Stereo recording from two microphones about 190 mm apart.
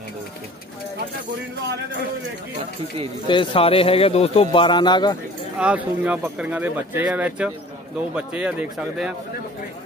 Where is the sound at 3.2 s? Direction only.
25° left (ahead or behind).